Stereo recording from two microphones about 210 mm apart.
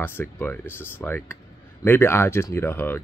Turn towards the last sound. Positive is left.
turn(degrees=10)  # may be behind; listen again after turning